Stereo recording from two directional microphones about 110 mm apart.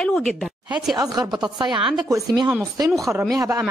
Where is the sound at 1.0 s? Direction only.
35° right (ahead or behind).